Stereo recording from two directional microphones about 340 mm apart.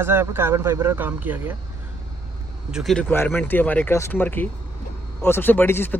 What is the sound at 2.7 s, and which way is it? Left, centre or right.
Speech, centre.